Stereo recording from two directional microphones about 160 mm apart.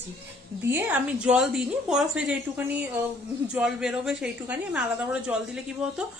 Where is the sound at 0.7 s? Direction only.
15° right (ahead or behind).